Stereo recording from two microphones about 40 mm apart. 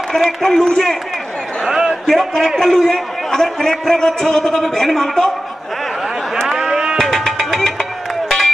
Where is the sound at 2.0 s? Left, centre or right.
Centre.